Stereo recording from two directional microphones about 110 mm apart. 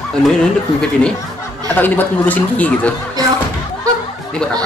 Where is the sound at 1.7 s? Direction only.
15° left (ahead or behind).